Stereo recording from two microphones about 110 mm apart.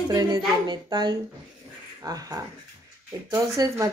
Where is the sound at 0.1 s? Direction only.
35° right (ahead or behind).